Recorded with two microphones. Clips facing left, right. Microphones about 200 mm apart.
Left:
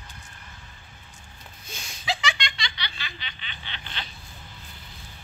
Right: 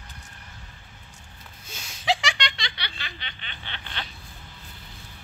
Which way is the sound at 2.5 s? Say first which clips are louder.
Left 1 dB; 60° right (ahead or behind).